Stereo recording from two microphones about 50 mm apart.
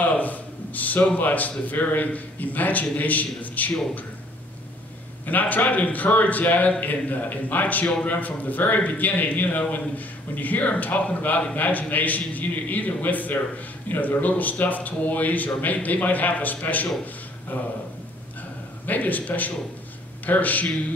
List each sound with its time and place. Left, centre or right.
0.2 s a man's voice: left
5.2 s a man's voice: left
18.9 s a man's voice: left